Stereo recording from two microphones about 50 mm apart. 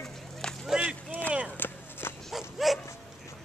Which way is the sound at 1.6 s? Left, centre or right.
Left.